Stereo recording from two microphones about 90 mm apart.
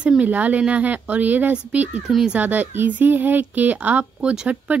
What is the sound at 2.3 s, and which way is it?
A woman's voice, 15° right (ahead or behind).